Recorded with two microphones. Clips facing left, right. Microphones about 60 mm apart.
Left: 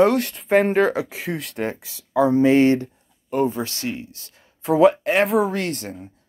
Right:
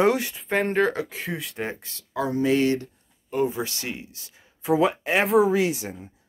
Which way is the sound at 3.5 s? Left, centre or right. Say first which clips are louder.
Left 4 dB; centre.